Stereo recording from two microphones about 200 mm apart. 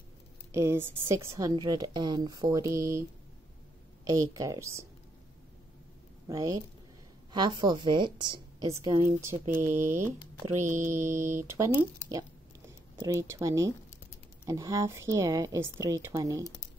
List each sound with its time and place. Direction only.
0.5 s a woman's voice: 15° right (ahead or behind)
6.2 s a woman's voice: 15° right (ahead or behind)
11.1 s speech: 40° right (ahead or behind)
11.5 s a woman's voice: 10° right (ahead or behind)